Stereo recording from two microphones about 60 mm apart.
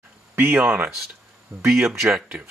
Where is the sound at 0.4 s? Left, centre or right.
Right.